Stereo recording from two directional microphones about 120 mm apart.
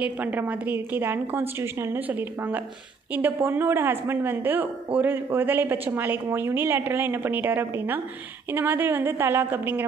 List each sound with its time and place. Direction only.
0.0 s a woman's voice: 15° right (ahead or behind)